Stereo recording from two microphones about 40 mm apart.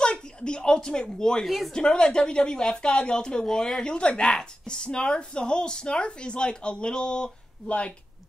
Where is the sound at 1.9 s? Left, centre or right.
Centre.